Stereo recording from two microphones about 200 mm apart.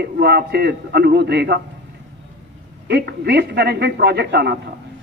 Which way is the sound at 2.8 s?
55° right (ahead or behind).